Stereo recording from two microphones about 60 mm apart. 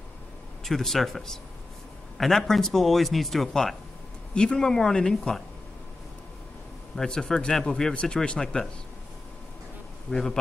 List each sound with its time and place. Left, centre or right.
0.7 s a man's voice: centre
7.0 s speech: centre
10.1 s speech: centre